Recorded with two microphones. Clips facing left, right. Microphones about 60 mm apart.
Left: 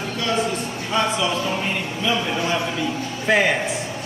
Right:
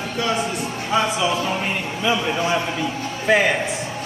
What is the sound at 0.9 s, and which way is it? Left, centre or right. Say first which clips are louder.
A man's voice: right 1 dB; centre.